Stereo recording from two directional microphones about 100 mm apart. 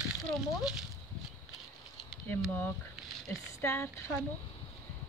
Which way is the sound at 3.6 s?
25° left (ahead or behind).